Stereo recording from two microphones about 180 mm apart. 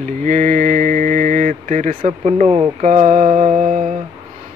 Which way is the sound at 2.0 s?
35° right (ahead or behind).